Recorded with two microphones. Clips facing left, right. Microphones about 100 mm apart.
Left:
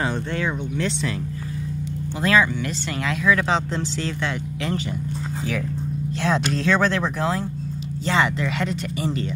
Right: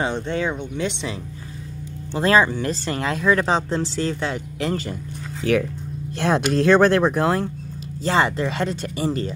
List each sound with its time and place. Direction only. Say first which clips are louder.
0.0 s speech: right 2 dB; 20° right (ahead or behind)
2.1 s speech: right 3 dB; 35° right (ahead or behind)
5.5 s speech: right 9 dB; 65° right (ahead or behind)
6.1 s speech: right 4 dB; 50° right (ahead or behind)
8.0 s speech: right 2 dB; 40° right (ahead or behind)